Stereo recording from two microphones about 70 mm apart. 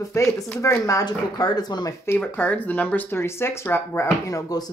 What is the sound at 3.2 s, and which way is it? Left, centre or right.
Speech, left.